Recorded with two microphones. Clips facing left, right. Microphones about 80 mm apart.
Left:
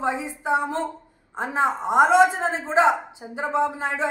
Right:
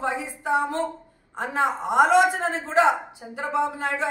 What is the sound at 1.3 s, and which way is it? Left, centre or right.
A woman's voice, left.